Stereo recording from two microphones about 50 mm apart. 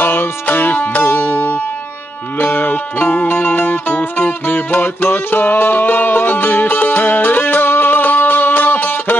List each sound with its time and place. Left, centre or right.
0.0 s music: left